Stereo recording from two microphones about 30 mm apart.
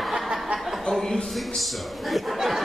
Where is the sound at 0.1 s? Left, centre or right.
Centre.